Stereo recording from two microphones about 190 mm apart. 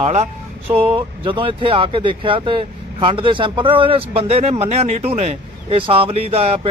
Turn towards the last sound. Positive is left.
turn(degrees=-35)  # may be behind; listen again after turning